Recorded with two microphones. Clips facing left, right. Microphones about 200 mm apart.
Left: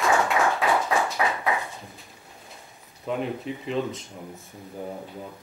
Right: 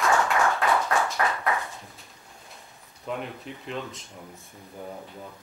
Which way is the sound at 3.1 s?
Centre (ahead or behind).